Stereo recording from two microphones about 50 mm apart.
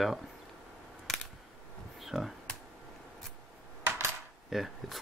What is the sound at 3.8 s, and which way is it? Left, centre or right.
Coin, right.